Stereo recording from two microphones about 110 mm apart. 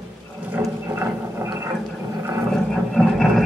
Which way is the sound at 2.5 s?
5° left (ahead or behind).